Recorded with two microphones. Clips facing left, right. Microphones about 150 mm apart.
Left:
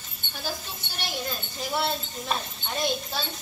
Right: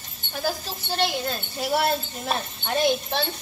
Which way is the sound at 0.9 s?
75° right (ahead or behind).